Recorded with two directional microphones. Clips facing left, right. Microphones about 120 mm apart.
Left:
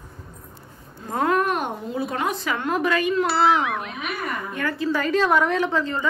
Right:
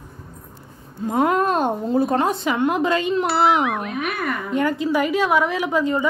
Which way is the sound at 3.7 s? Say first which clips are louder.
Right 3 dB; 5° right (ahead or behind).